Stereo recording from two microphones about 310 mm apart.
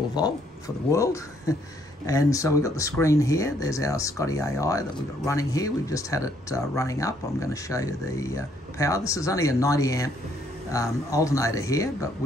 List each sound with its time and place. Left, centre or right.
0.2 s speech: centre